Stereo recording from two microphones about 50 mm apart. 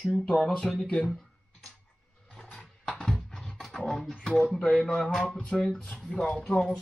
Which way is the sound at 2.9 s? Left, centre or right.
Centre.